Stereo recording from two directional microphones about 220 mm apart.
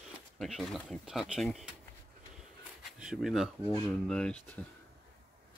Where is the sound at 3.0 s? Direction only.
Centre (ahead or behind).